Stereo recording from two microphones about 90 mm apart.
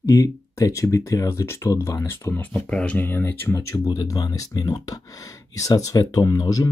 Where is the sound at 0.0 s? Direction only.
35° left (ahead or behind).